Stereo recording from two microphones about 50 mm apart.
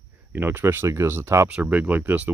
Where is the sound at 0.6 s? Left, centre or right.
Right.